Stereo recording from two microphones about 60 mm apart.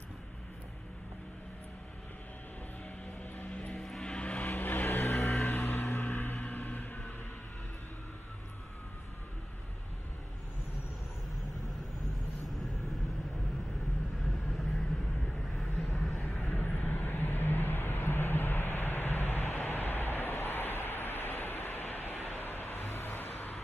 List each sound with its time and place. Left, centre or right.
3.3 s music: left
3.7 s vehicle: centre
4.0 s vehicle: centre
4.5 s vehicle: left
4.8 s vehicle: left
5.3 s a sound: left
12.4 s vehicle: centre
15.5 s vehicle: centre
16.4 s vehicle: left